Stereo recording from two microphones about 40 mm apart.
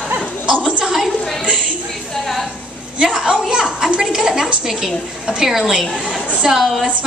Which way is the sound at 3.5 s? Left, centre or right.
Right.